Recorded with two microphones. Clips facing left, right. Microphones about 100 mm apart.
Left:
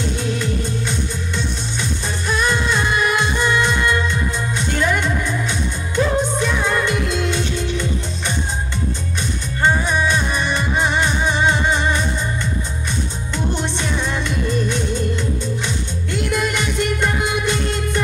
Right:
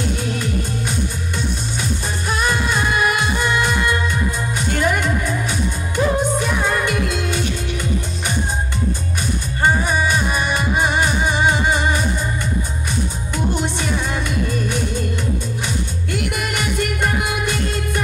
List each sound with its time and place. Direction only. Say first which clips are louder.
0.2 s music: left 1 dB; 10° right (ahead or behind)
9.6 s music: even; 10° right (ahead or behind)
16.1 s music: left 3 dB; 10° right (ahead or behind)